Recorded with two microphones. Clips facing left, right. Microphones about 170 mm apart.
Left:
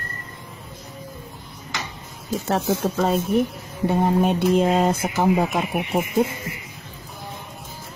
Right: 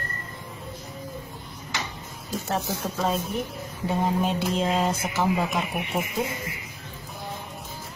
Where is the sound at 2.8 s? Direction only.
65° left (ahead or behind).